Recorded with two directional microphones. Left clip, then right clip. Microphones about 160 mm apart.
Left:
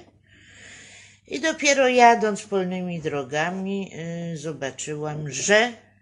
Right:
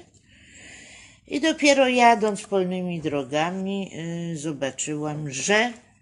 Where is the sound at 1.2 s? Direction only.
25° right (ahead or behind).